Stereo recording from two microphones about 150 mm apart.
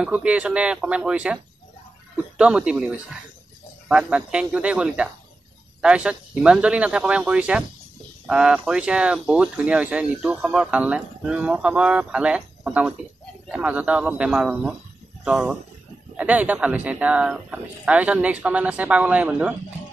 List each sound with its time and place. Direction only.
0.0 s speech: 10° right (ahead or behind)